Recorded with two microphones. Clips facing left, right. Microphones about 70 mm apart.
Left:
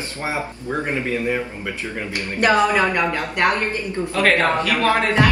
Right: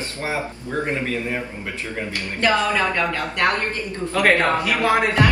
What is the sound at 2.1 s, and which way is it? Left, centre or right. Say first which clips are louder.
Speech: left 3 dB; left.